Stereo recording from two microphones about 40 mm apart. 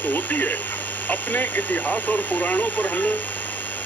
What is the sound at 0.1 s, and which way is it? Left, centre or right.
Speech, left.